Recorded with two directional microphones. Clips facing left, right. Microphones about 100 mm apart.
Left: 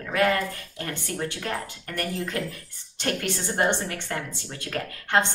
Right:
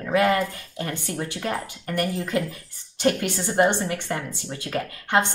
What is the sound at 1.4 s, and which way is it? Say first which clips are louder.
Speech: right 3 dB; 15° right (ahead or behind).